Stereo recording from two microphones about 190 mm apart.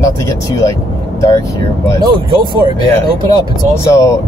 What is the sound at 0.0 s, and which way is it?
Speech, 15° left (ahead or behind).